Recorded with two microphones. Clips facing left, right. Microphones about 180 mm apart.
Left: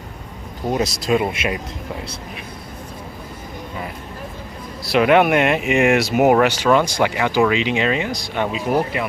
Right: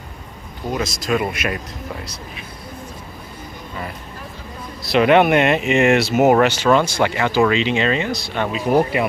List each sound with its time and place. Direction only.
0.7 s speech: 35° left (ahead or behind)
4.8 s speech: 5° left (ahead or behind)